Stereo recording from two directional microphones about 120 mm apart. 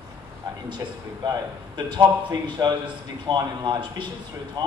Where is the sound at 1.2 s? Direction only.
40° right (ahead or behind).